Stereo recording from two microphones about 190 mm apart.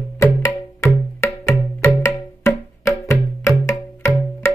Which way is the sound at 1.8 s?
15° left (ahead or behind).